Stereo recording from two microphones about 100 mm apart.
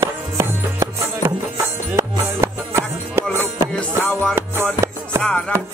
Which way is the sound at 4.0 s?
15° left (ahead or behind).